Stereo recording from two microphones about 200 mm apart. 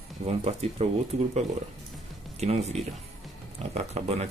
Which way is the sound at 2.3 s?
30° right (ahead or behind).